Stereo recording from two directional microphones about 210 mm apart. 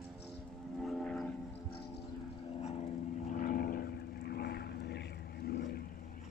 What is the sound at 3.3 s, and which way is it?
Vehicle, 40° left (ahead or behind).